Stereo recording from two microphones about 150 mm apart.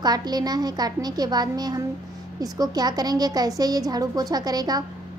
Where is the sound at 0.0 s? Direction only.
25° right (ahead or behind).